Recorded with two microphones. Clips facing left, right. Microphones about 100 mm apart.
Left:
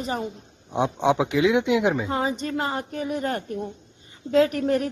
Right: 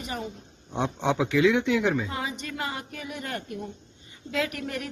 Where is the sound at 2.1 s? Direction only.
35° left (ahead or behind).